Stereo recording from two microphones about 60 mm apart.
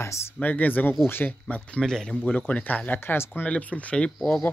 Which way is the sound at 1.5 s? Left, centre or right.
Left.